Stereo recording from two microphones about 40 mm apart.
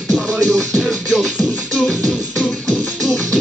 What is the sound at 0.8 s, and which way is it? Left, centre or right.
Music, centre.